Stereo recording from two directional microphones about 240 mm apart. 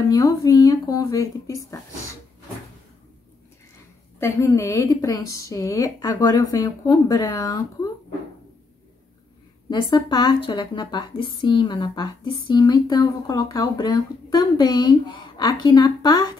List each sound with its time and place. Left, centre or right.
0.0 s speech: centre
4.2 s speech: centre
9.7 s speech: centre